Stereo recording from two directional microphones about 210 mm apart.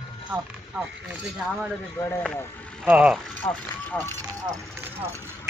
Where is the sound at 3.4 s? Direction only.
20° left (ahead or behind).